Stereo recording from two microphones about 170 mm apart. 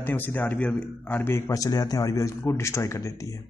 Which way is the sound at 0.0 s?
10° left (ahead or behind).